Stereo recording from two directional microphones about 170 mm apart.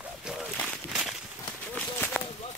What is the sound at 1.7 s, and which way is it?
Run, 5° left (ahead or behind).